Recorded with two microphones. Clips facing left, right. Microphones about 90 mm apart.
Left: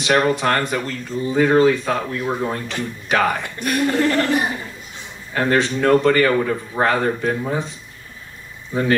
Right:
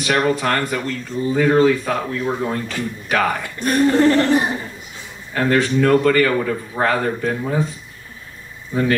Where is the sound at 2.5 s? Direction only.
25° left (ahead or behind).